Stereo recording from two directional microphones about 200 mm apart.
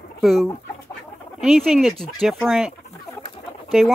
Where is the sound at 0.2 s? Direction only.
Centre (ahead or behind).